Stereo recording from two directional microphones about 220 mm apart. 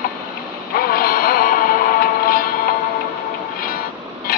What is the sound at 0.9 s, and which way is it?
Music, 40° left (ahead or behind).